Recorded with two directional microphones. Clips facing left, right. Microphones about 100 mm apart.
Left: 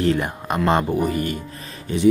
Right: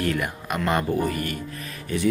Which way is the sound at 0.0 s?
25° left (ahead or behind).